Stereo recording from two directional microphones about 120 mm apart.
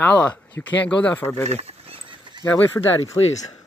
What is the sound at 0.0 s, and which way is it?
Speech, 10° left (ahead or behind).